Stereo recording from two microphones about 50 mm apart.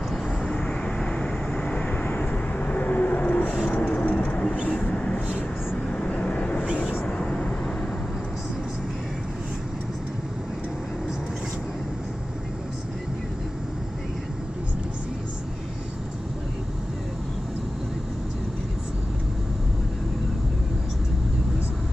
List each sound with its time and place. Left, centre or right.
0.4 s vehicle: centre